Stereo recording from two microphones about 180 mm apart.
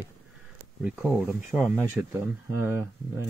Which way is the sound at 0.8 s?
5° right (ahead or behind).